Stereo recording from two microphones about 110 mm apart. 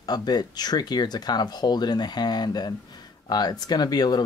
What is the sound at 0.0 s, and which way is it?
Speech, 40° left (ahead or behind).